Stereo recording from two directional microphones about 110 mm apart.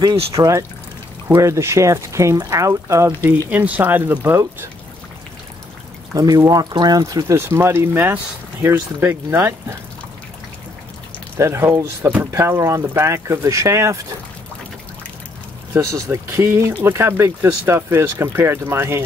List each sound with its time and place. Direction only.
0.4 s speech: 30° right (ahead or behind)
3.4 s speech: 15° right (ahead or behind)
6.1 s speech: 35° right (ahead or behind)
11.3 s speech: 25° right (ahead or behind)
15.9 s speech: 25° right (ahead or behind)